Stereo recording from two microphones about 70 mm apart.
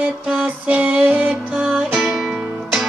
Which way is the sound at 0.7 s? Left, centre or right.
Right.